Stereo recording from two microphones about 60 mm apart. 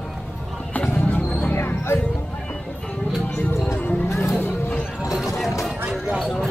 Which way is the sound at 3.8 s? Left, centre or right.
Left.